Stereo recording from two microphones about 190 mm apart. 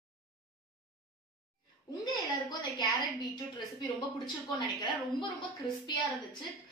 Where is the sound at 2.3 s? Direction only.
20° left (ahead or behind).